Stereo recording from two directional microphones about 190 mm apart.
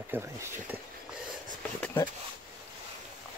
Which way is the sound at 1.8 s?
10° left (ahead or behind).